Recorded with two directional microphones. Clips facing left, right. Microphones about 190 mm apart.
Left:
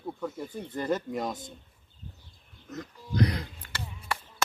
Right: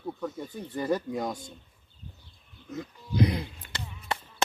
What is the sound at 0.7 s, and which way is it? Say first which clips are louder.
Speech: right 1 dB; centre (ahead or behind).